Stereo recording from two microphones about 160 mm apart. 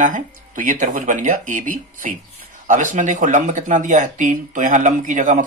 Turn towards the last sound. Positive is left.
turn(degrees=-55)  # may be behind; listen again after turning